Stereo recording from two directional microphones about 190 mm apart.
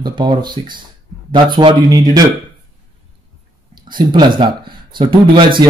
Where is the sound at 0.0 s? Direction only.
25° right (ahead or behind).